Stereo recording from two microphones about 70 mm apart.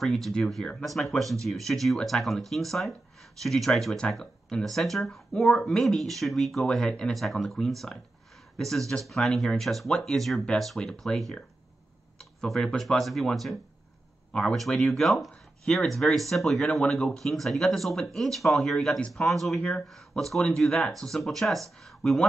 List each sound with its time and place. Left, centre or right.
0.0 s speech: centre
14.7 s speech: centre
15.0 s speech: centre